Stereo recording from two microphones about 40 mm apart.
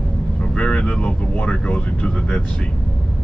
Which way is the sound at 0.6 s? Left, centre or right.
Left.